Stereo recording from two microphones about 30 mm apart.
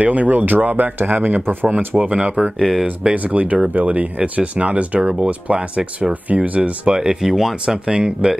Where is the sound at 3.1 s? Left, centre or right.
Right.